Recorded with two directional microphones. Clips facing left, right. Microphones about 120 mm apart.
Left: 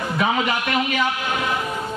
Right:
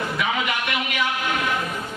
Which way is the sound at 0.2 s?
35° left (ahead or behind).